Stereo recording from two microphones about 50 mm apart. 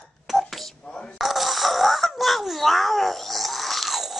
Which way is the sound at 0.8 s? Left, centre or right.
Left.